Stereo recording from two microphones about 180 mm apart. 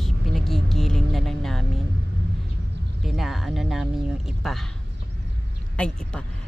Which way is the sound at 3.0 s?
Centre (ahead or behind).